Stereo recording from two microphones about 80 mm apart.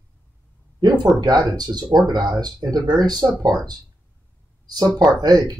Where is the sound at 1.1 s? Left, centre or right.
Right.